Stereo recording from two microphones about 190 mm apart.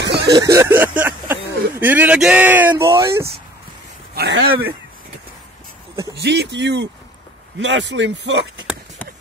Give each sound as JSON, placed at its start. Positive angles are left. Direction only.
{"t": 0.0, "sound": "a sound", "side_deg": -60}
{"t": 0.3, "sound": "speech", "side_deg": -20}
{"t": 4.3, "sound": "speech", "side_deg": -90}
{"t": 6.1, "sound": "speech", "side_deg": -65}